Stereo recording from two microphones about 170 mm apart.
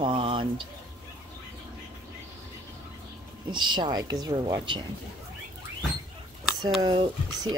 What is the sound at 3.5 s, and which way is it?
Speech, 25° right (ahead or behind).